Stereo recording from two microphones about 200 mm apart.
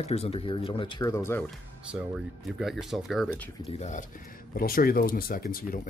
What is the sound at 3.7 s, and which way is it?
Speech, 35° left (ahead or behind).